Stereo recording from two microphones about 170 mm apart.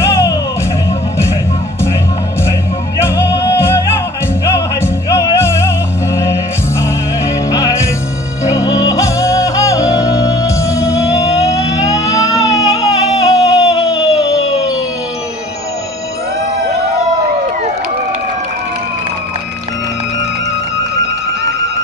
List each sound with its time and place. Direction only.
0.0 s music: 15° left (ahead or behind)
3.0 s music: 15° left (ahead or behind)
6.8 s music: 20° left (ahead or behind)
11.4 s a sound: 20° left (ahead or behind)